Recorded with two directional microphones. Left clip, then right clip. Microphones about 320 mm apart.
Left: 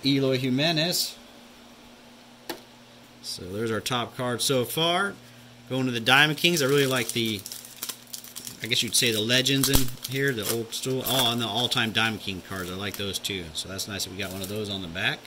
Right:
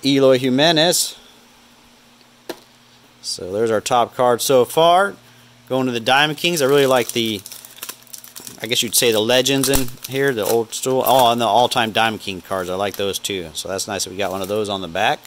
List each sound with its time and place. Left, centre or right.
0.0 s speech: centre
3.2 s speech: centre
8.5 s speech: centre